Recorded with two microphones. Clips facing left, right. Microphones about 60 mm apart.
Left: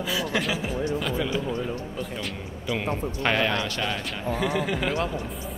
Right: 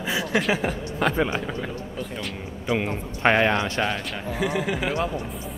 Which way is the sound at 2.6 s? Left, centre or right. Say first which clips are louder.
Right 2 dB; right.